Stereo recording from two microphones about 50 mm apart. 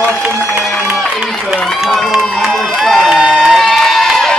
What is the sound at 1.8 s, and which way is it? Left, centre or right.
Speech, centre.